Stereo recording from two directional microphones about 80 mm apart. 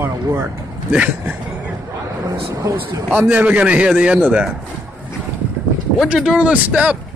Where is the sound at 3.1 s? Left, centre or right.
Centre.